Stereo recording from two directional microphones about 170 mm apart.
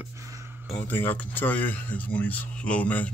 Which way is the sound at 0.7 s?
10° left (ahead or behind).